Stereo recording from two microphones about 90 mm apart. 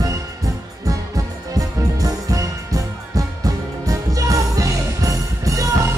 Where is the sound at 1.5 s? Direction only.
40° right (ahead or behind).